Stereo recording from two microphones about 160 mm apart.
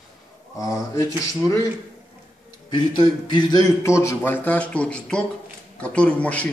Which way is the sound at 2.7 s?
30° left (ahead or behind).